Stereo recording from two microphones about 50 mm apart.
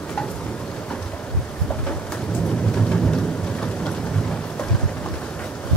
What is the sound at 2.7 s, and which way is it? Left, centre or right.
Rain, centre.